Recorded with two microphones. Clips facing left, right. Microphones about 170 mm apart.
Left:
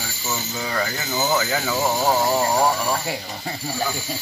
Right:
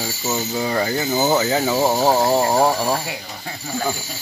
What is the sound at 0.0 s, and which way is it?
Speech, 30° right (ahead or behind).